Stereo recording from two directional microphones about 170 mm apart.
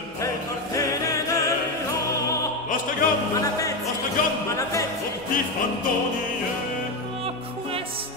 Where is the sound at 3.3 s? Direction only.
20° left (ahead or behind).